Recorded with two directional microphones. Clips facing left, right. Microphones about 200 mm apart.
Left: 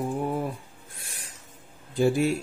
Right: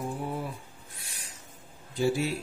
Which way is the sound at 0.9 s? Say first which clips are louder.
Left 4 dB; 50° left (ahead or behind).